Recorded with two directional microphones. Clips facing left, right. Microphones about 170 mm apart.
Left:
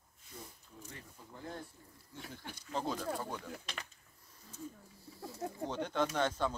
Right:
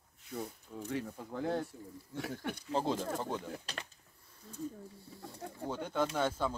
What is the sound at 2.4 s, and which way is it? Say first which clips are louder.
Speech: right 10 dB; 65° right (ahead or behind).